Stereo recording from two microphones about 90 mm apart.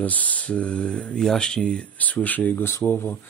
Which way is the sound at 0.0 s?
15° left (ahead or behind).